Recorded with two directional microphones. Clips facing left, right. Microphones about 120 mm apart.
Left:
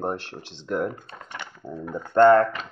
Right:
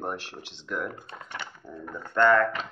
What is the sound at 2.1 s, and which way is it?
Speech, 35° left (ahead or behind).